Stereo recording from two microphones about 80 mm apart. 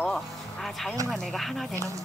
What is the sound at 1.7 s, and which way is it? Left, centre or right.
Speech, right.